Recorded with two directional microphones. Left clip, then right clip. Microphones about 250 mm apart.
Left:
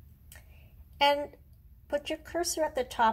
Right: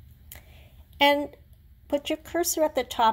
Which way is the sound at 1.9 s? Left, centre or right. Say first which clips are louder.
Right 5 dB; right.